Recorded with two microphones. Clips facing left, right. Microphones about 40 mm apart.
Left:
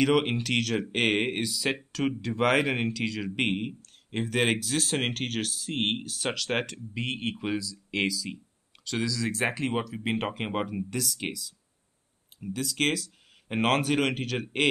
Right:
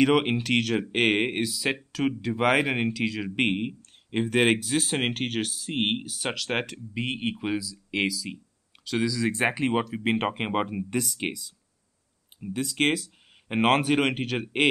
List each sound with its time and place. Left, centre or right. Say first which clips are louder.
0.0 s speech: right 2 dB; centre